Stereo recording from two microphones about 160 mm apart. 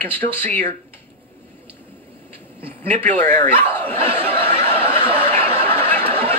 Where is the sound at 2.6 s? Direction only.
35° right (ahead or behind).